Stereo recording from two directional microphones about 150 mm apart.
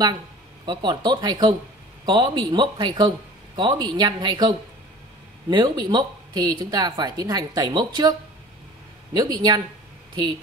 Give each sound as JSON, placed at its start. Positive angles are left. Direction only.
{"t": 0.7, "sound": "a woman's voice", "side_deg": -30}